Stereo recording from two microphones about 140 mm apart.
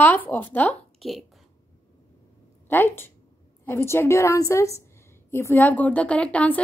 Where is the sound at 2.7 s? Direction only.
15° left (ahead or behind).